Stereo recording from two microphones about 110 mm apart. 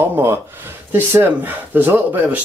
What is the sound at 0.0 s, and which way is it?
Speech, 20° right (ahead or behind).